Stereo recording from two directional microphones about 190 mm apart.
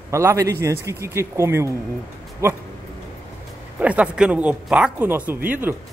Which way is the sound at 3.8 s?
5° right (ahead or behind).